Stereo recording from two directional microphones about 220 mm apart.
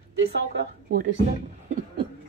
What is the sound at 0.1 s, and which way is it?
Speech, 60° right (ahead or behind).